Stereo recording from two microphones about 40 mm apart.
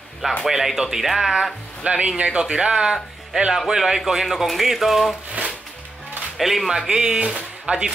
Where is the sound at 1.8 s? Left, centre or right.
Right; by 5.2 s centre.